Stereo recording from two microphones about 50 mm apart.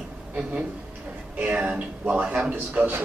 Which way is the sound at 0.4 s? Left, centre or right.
Right.